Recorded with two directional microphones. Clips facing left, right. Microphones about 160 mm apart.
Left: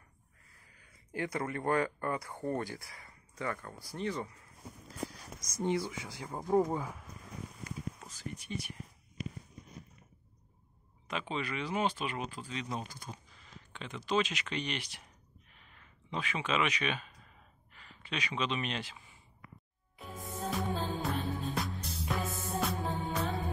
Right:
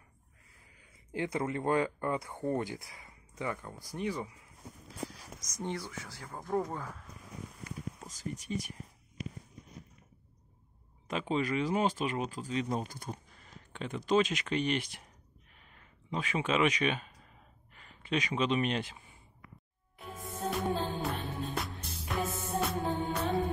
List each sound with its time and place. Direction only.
0.7 s speech: 20° right (ahead or behind)
5.6 s speech: 15° left (ahead or behind)
8.1 s speech: 40° right (ahead or behind)
11.1 s speech: 40° right (ahead or behind)
15.5 s a sound: 40° right (ahead or behind)
18.1 s speech: 40° right (ahead or behind)
20.2 s music: centre (ahead or behind)